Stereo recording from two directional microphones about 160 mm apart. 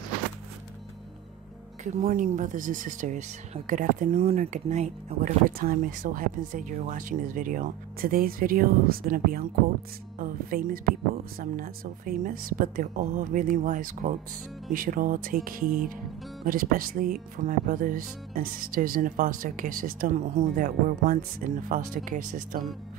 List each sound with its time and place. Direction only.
1.9 s speech: 55° right (ahead or behind)
5.6 s speech: 60° right (ahead or behind)
20.5 s speech: 60° right (ahead or behind)